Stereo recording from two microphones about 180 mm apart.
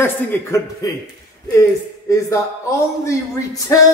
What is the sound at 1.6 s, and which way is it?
Speech, 15° left (ahead or behind).